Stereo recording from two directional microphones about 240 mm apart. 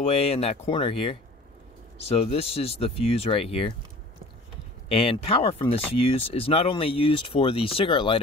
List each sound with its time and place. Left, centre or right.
0.0 s speech: left
4.8 s speech: left